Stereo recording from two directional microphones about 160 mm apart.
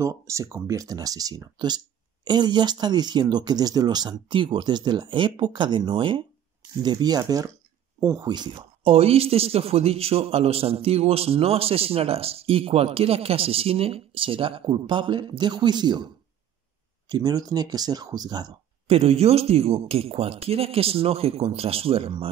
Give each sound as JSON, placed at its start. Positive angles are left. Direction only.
{"t": 0.0, "sound": "speech", "side_deg": -20}
{"t": 17.1, "sound": "speech", "side_deg": -25}
{"t": 18.9, "sound": "speech", "side_deg": -40}